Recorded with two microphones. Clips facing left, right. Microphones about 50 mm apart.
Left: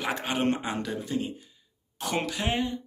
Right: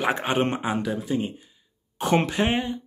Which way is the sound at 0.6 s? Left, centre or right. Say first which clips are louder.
Right 5 dB; centre.